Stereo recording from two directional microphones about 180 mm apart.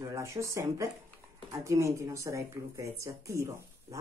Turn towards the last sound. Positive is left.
turn(degrees=-15)  # may be behind; listen again after turning